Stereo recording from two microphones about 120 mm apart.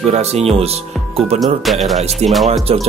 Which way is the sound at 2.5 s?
55° right (ahead or behind).